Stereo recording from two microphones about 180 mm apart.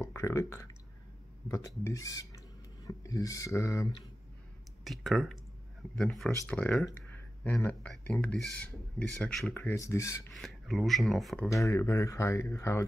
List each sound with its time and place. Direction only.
0.0 s speech: 15° left (ahead or behind)
4.8 s speech: centre (ahead or behind); by 10.1 s 15° left (ahead or behind)
10.3 s speech: centre (ahead or behind)
11.6 s speech: 15° left (ahead or behind)